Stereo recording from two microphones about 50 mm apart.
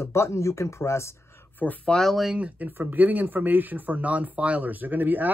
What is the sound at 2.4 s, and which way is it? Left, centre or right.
Speech, right.